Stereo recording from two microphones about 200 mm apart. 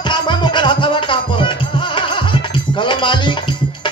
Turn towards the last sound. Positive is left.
turn(degrees=25)  # may be behind; listen again after turning